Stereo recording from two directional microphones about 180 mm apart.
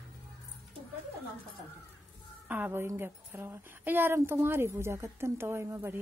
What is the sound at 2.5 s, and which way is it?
A woman's voice, 10° right (ahead or behind).